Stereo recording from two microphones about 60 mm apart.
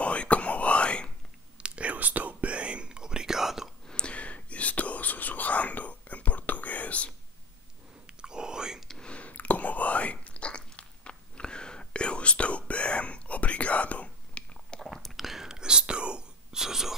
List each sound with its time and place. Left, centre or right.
0.0 s wail: left
1.6 s whispering: right; by 3.7 s centre
3.8 s whispering: centre
8.1 s whispering: centre
8.8 s whispering: centre
14.8 s whispering: centre